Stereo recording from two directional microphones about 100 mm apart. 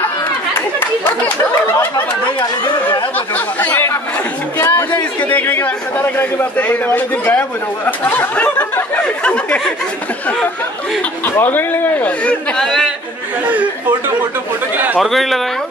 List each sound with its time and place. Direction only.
1.2 s chatter: 25° left (ahead or behind)
3.3 s a man's voice: 15° left (ahead or behind)
11.2 s a man's voice: 20° left (ahead or behind); by 12.9 s 5° left (ahead or behind)
15.0 s speech: centre (ahead or behind)